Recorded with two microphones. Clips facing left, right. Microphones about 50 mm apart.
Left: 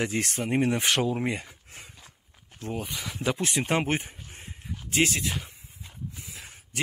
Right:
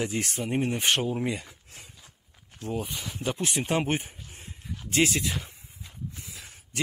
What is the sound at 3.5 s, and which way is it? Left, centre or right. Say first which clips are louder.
Speech: right 1 dB; left.